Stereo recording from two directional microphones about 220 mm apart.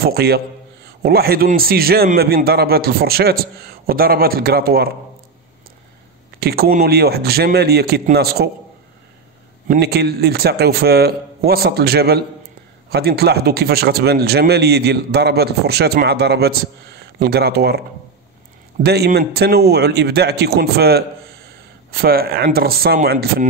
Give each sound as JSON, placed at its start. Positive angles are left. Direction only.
{"t": 0.0, "sound": "a man's voice", "side_deg": -45}
{"t": 6.4, "sound": "a man's voice", "side_deg": -45}
{"t": 9.7, "sound": "a man's voice", "side_deg": -45}